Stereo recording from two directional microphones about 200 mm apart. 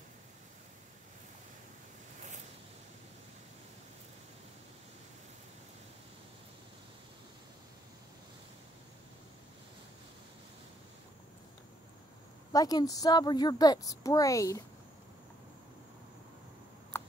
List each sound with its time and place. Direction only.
12.5 s a woman's voice: 20° left (ahead or behind)